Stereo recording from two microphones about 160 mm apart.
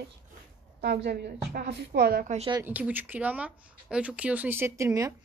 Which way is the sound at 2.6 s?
10° right (ahead or behind).